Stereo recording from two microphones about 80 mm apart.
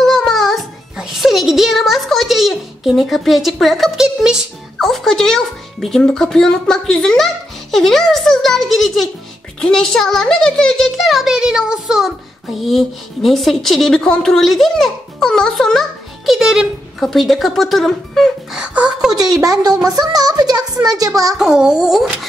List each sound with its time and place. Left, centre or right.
0.0 s music: centre
0.9 s a sound: centre
4.7 s a woman's voice: centre
18.6 s a child's voice: centre
19.4 s speech: right
21.4 s a child's voice: centre